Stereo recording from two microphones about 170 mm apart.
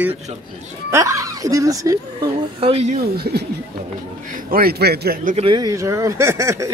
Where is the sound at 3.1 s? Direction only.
70° right (ahead or behind).